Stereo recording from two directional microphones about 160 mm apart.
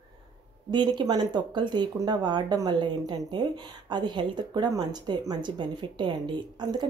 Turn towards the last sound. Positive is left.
turn(degrees=-30)  # may be behind; listen again after turning